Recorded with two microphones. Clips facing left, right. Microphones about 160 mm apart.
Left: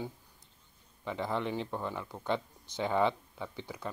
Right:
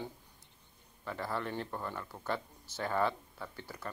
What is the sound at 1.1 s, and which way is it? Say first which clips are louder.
Speech: left 4 dB; 15° left (ahead or behind).